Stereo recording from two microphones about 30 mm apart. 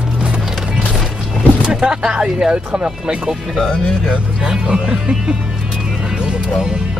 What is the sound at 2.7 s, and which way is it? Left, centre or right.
Speech, right.